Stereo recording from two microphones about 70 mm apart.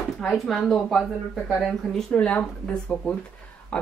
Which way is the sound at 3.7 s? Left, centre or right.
Centre.